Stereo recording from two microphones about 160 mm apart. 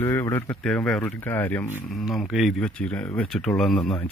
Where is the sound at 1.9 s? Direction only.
Centre (ahead or behind).